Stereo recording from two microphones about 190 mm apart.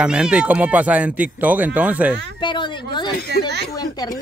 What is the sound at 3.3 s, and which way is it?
Speech, 60° right (ahead or behind).